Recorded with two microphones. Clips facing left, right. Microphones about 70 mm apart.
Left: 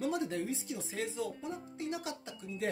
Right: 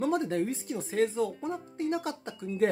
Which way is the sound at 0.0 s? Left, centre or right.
Right.